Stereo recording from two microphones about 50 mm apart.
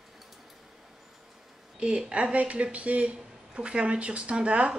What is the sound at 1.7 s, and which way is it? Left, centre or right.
Speech, centre.